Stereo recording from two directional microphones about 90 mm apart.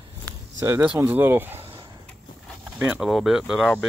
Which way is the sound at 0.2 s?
35° right (ahead or behind).